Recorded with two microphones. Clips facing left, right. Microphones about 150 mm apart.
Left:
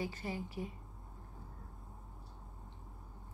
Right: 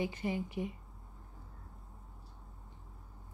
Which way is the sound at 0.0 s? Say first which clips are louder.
Right 5 dB; 20° right (ahead or behind).